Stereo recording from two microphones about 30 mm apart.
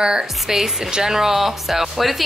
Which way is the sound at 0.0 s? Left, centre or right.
Right.